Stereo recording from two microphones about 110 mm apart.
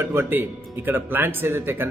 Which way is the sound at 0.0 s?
20° right (ahead or behind).